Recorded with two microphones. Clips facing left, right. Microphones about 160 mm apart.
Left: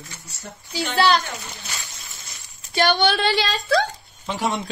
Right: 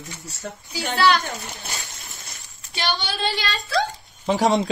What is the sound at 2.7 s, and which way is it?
Speech, 50° left (ahead or behind).